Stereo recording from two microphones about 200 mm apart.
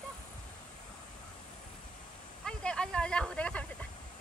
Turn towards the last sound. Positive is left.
turn(degrees=5)  # may be behind; listen again after turning